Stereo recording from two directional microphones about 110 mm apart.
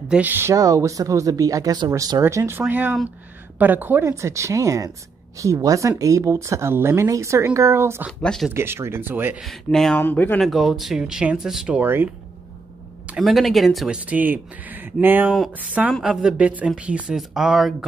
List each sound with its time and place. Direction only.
0.1 s speech: 15° right (ahead or behind)
0.6 s speech: 30° right (ahead or behind)
8.2 s speech: 5° left (ahead or behind)
8.5 s speech: 25° right (ahead or behind)
9.4 s speech: centre (ahead or behind)
9.9 s speech: 20° left (ahead or behind)
10.4 s speech: centre (ahead or behind); by 12.1 s 20° right (ahead or behind)
13.2 s speech: centre (ahead or behind)